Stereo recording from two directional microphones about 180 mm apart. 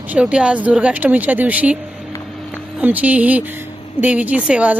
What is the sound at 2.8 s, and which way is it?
Speech, 10° right (ahead or behind).